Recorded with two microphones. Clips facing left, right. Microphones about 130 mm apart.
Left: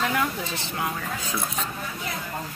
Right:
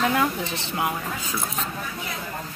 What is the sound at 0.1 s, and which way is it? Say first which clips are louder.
Speech: right 3 dB; 20° right (ahead or behind).